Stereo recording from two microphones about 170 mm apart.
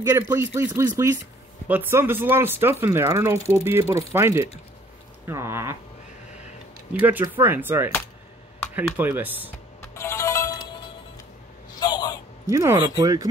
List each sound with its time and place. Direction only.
0.0 s speech: 15° right (ahead or behind)
6.9 s speech: 10° right (ahead or behind)
9.8 s ringtone: 15° left (ahead or behind)
11.7 s a sound: 25° left (ahead or behind)
12.4 s speech: 15° right (ahead or behind)